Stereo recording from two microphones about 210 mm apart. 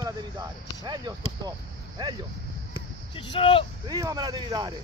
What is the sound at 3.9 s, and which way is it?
Speech, 20° right (ahead or behind).